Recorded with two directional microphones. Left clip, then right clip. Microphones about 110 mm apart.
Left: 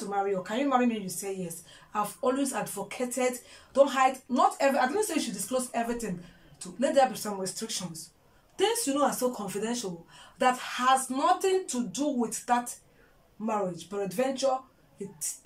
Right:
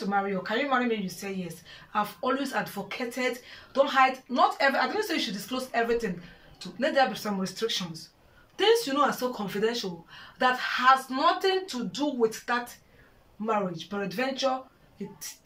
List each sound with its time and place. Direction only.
0.1 s speech: 15° left (ahead or behind)